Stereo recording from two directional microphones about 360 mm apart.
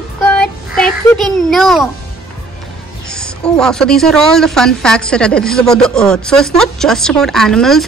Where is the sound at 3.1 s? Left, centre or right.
Centre.